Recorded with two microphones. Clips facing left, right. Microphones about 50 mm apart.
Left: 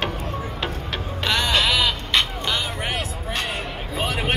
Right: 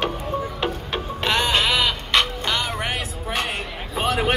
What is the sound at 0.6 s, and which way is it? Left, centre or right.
Music, centre.